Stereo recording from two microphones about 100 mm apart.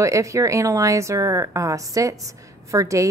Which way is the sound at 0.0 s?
30° right (ahead or behind).